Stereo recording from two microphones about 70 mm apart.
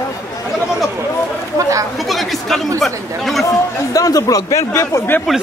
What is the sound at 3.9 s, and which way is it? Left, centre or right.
Speech, left.